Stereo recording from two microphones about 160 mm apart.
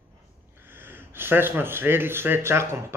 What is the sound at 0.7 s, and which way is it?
Speech, 15° right (ahead or behind).